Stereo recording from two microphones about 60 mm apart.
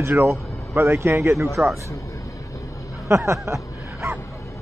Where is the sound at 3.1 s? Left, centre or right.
Right.